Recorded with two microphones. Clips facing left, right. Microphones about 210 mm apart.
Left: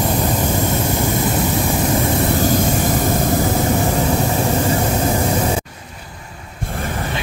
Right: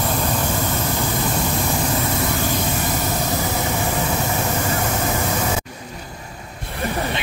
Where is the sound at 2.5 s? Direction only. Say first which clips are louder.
Left 6 dB; 45° left (ahead or behind).